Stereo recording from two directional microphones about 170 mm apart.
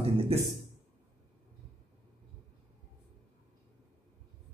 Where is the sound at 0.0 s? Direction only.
35° right (ahead or behind).